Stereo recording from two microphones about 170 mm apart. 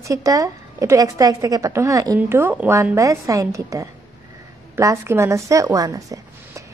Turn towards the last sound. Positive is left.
turn(degrees=-20)  # may be behind; listen again after turning